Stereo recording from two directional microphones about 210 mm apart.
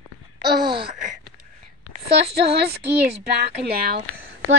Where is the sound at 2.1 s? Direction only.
50° right (ahead or behind).